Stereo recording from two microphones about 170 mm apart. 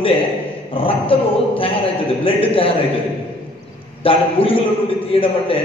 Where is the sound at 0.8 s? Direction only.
35° left (ahead or behind).